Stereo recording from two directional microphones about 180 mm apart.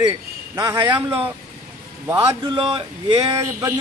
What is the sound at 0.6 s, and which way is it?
Speech, 20° right (ahead or behind).